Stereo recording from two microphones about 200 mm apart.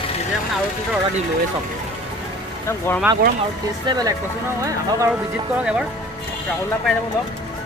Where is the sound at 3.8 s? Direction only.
20° right (ahead or behind).